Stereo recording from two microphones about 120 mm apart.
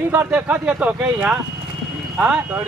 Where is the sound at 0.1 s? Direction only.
10° right (ahead or behind).